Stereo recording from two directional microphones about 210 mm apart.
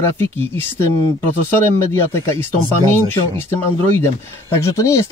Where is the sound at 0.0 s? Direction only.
10° left (ahead or behind).